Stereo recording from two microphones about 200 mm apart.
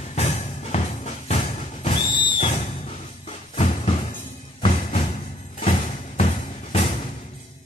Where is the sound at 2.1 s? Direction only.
25° left (ahead or behind).